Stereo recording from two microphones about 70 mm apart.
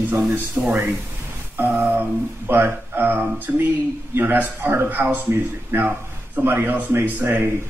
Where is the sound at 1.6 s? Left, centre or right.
Right.